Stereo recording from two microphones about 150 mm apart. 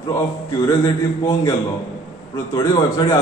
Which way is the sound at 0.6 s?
20° left (ahead or behind).